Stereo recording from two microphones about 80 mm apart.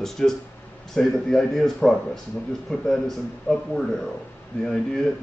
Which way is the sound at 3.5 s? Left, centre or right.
Centre.